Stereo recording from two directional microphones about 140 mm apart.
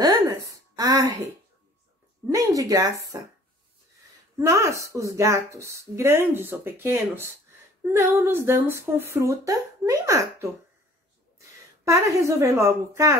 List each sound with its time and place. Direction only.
0.3 s throat clearing: 25° right (ahead or behind)
2.3 s speech: 25° right (ahead or behind)
4.4 s speech: 20° right (ahead or behind)
11.8 s speech: 20° right (ahead or behind)